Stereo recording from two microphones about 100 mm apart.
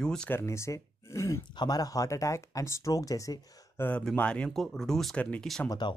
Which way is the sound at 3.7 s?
20° left (ahead or behind).